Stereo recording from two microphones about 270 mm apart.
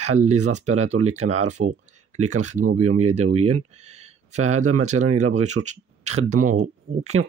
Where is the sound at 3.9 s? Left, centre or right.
Right.